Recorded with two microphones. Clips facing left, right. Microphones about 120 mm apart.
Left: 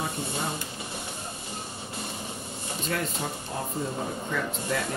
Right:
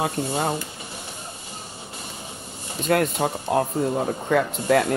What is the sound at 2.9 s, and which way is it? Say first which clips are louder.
Speech: right 11 dB; 65° right (ahead or behind).